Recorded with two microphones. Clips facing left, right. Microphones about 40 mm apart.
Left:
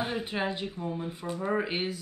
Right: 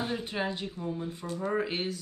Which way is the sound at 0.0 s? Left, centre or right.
Centre.